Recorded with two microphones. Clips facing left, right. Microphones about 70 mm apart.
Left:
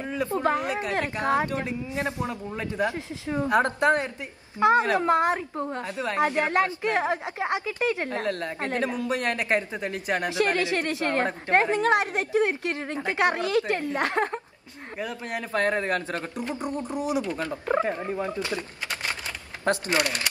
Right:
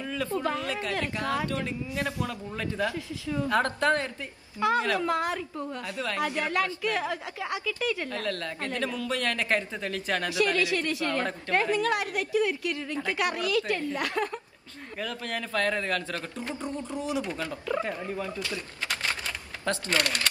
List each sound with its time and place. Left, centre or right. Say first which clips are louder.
0.0 s a man's voice: left 4 dB; left
15.0 s a woman's voice: left 2 dB; centre
17.4 s speech: left 5 dB; left